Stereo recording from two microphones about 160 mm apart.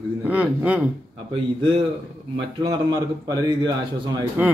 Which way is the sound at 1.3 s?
35° right (ahead or behind).